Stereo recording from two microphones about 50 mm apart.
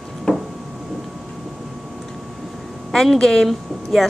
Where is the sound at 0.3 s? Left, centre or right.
Left.